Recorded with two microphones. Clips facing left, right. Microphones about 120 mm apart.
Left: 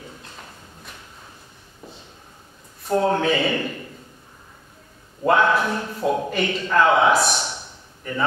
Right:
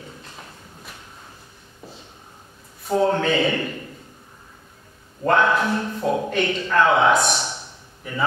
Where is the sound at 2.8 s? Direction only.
Centre (ahead or behind).